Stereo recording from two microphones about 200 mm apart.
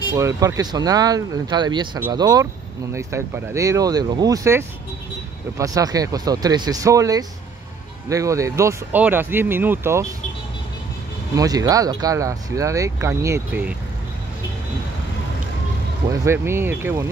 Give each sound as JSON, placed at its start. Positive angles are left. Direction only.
{"t": 0.1, "sound": "speech", "side_deg": -15}
{"t": 11.3, "sound": "speech", "side_deg": -20}
{"t": 16.1, "sound": "speech", "side_deg": -10}